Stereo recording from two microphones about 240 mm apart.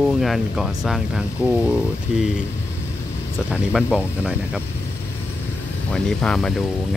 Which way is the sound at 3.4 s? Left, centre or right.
Centre.